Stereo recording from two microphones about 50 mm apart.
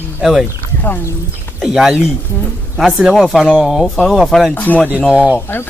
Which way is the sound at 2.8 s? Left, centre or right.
Centre.